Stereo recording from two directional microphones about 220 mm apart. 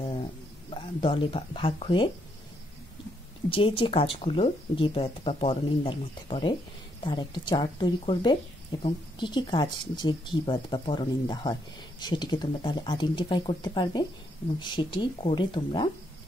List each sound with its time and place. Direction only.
0.7 s speech: 25° left (ahead or behind)
3.4 s speech: 25° left (ahead or behind)